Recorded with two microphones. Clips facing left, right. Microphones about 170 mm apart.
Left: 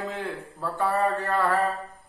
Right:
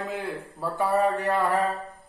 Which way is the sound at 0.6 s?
15° right (ahead or behind).